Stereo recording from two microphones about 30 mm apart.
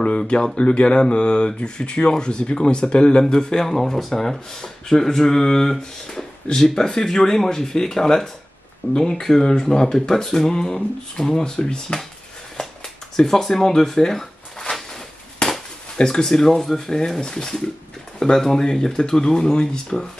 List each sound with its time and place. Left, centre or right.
0.0 s speech: left
3.3 s speech: left
3.6 s speech: centre; by 12.0 s left
13.1 s speech: centre
13.7 s a sound: centre
16.0 s speech: left